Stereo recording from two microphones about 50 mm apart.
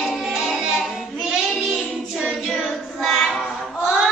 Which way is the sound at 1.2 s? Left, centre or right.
Centre.